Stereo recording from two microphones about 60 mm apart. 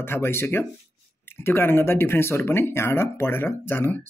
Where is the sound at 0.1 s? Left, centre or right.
Left.